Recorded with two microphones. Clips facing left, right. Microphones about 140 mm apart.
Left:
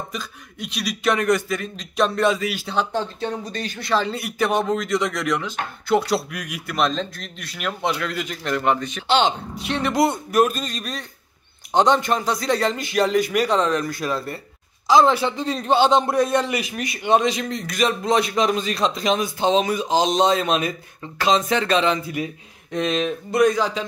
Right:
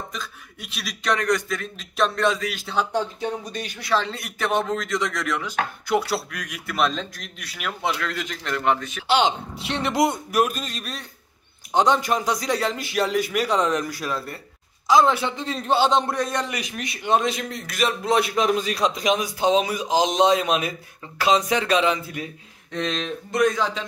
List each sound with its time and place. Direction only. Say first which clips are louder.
0.6 s a man's voice: left 8 dB; 5° right (ahead or behind)
3.9 s a man's voice: left 2 dB; 5° left (ahead or behind)
9.6 s speech: left 2 dB; 25° right (ahead or behind)
10.3 s a man's voice: left 3 dB; 5° right (ahead or behind)
13.6 s a man's voice: left 2 dB; 15° right (ahead or behind)
22.1 s speech: left 6 dB; 15° left (ahead or behind)